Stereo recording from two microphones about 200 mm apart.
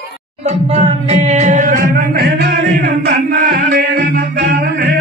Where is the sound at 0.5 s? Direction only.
35° right (ahead or behind).